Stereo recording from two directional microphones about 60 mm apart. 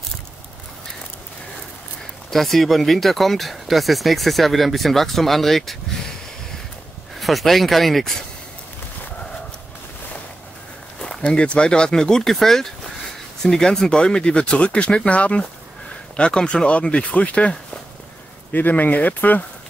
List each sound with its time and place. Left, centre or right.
2.3 s speech: centre
7.2 s speech: centre
11.0 s speech: centre
18.5 s speech: left